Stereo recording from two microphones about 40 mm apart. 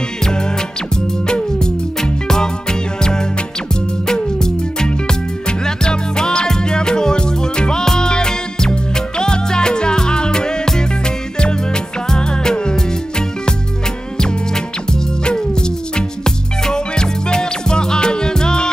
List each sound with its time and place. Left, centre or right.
1.2 s music: centre
14.1 s music: centre